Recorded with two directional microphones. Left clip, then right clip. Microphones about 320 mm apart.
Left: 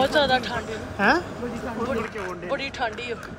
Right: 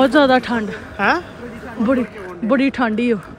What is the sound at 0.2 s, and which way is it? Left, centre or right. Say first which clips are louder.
Speech: right 7 dB; right.